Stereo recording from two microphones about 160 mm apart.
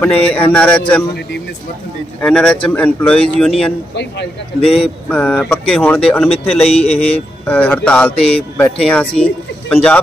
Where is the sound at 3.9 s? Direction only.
90° left.